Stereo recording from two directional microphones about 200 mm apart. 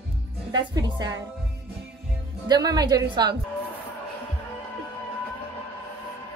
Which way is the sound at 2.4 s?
20° right (ahead or behind).